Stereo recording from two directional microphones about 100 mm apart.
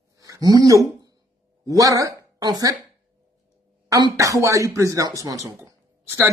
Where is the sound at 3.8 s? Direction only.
35° right (ahead or behind).